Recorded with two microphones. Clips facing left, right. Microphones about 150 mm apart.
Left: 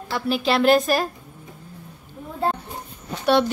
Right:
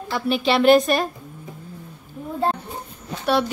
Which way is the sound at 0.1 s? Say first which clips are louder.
Right 1 dB; centre (ahead or behind).